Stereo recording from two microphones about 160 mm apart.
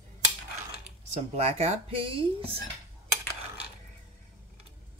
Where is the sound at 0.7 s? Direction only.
40° right (ahead or behind).